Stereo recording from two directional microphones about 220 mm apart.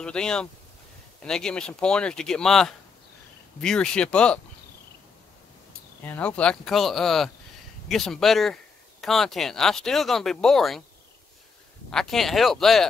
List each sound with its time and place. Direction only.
0.0 s speech: 5° left (ahead or behind)
6.0 s speech: 5° left (ahead or behind)
11.9 s speech: centre (ahead or behind)